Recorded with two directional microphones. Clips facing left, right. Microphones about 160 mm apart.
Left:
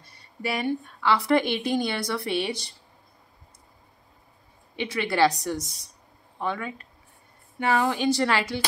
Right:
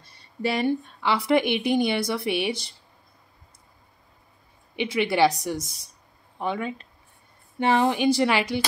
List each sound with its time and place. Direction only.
0.2 s speech: 30° right (ahead or behind)
1.0 s a woman's voice: 15° right (ahead or behind)
4.9 s a woman's voice: 15° right (ahead or behind)
6.4 s a woman's voice: 20° right (ahead or behind)